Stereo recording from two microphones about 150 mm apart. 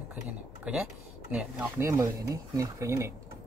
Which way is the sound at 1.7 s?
20° right (ahead or behind).